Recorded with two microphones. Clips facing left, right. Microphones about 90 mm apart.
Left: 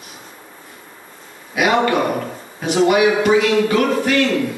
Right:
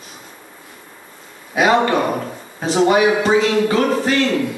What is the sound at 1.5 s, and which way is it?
A man's voice, 30° right (ahead or behind).